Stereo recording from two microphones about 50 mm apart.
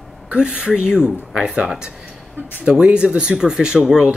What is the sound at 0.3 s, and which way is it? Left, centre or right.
Speech, centre.